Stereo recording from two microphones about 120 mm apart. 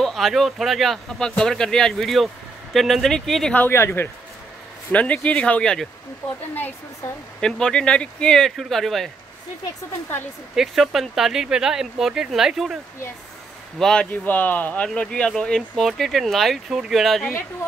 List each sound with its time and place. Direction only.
0.0 s speech: centre (ahead or behind)
3.5 s speech: 20° left (ahead or behind)
7.3 s speech: 5° left (ahead or behind)
10.5 s speech: centre (ahead or behind)
13.7 s speech: 5° left (ahead or behind)